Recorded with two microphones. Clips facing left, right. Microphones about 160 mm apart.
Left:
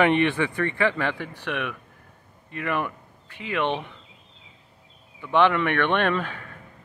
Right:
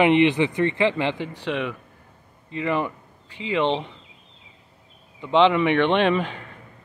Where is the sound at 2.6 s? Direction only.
15° right (ahead or behind).